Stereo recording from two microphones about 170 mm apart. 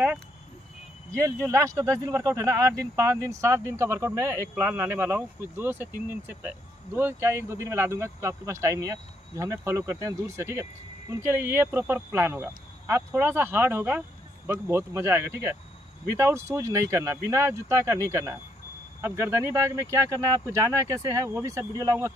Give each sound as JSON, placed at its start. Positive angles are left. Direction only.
{"t": 1.1, "sound": "speech", "side_deg": -15}